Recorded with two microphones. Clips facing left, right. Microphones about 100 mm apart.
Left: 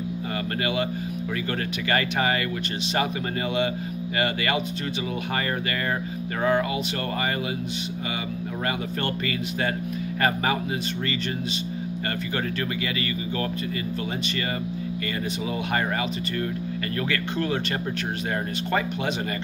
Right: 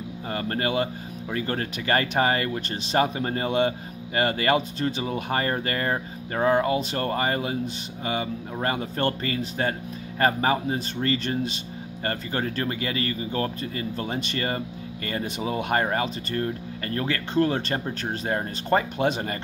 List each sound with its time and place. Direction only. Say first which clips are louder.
1.9 s speech: right 2 dB; 35° right (ahead or behind)
4.2 s speech: right 4 dB; 40° right (ahead or behind)
6.4 s speech: right 2 dB; 30° right (ahead or behind)
10.2 s speech: right 3 dB; 35° right (ahead or behind)
17.1 s speech: right 5 dB; 35° right (ahead or behind)